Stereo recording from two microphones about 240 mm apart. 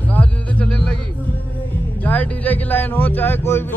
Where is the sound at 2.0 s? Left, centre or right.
Centre.